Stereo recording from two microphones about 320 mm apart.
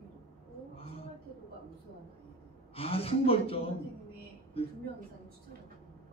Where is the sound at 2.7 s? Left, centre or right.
Centre.